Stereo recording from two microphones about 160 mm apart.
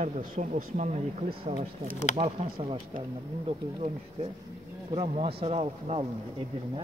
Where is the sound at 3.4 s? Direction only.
35° right (ahead or behind).